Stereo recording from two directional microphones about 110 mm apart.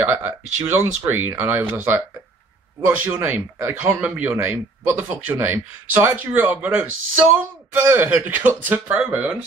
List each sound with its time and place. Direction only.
0.0 s speech: 20° right (ahead or behind)